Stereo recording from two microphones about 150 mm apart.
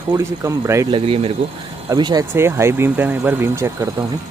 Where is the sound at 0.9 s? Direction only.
40° right (ahead or behind).